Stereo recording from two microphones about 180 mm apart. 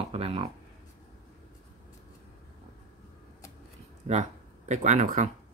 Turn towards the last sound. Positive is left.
turn(degrees=-40)  # may be behind; listen again after turning